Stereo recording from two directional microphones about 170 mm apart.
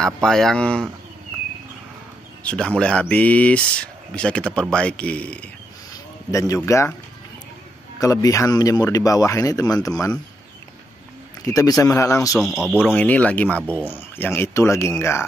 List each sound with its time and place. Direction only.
0.0 s speech: centre (ahead or behind)
2.4 s speech: 5° left (ahead or behind)
6.3 s speech: 20° left (ahead or behind)
8.0 s speech: 20° left (ahead or behind)
11.4 s speech: 20° left (ahead or behind)
12.4 s speech: centre (ahead or behind)
12.9 s speech: 10° left (ahead or behind)